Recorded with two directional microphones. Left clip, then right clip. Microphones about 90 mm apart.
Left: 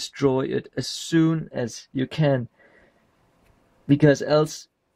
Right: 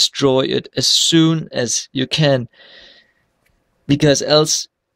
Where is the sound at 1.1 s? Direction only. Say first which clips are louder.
Right 7 dB; 10° right (ahead or behind).